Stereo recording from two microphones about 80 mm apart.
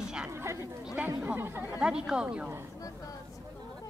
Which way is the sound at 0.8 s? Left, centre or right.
Centre.